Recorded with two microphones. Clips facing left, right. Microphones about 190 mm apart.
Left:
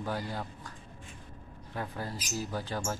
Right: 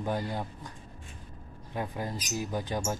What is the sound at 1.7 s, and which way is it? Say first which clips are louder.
Speech: right 3 dB; 15° right (ahead or behind).